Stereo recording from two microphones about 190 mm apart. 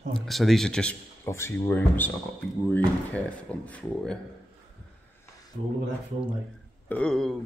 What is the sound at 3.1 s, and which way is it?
A man's voice, 5° left (ahead or behind).